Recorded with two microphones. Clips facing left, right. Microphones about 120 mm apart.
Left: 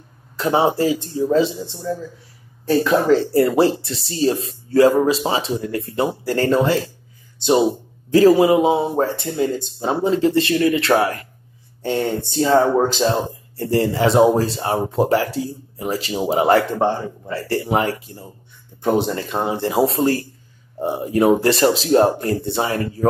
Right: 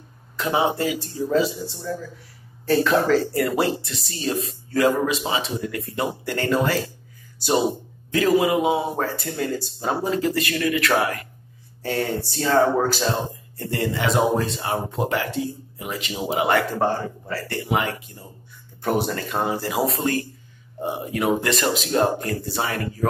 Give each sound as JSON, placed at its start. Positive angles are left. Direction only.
{"t": 0.4, "sound": "speech", "side_deg": 35}
{"t": 2.6, "sound": "speech", "side_deg": 15}
{"t": 3.3, "sound": "speech", "side_deg": 30}
{"t": 16.7, "sound": "speech", "side_deg": 20}
{"t": 17.5, "sound": "speech", "side_deg": 35}
{"t": 18.8, "sound": "speech", "side_deg": 20}